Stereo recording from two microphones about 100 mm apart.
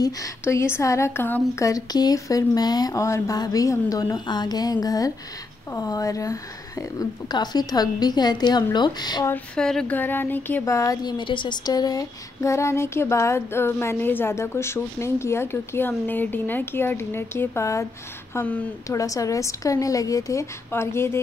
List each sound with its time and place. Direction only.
0.0 s a woman's voice: 30° left (ahead or behind)
9.6 s speech: 5° left (ahead or behind)
9.9 s speech: 20° left (ahead or behind)
10.6 s a woman's voice: 30° left (ahead or behind)
11.1 s speech: 55° left (ahead or behind); by 17.8 s 30° left (ahead or behind)
18.4 s speech: 15° left (ahead or behind)
18.9 s a woman's voice: 35° left (ahead or behind)